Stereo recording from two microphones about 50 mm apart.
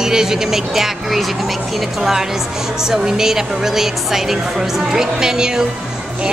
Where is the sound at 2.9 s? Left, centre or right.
Centre.